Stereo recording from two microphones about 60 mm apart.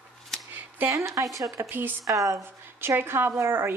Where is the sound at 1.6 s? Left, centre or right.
Right.